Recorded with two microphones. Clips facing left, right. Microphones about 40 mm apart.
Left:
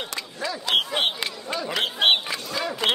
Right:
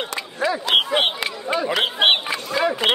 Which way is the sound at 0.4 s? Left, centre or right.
Right.